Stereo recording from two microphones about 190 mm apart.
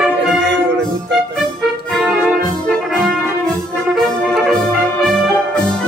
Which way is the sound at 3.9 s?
Centre (ahead or behind).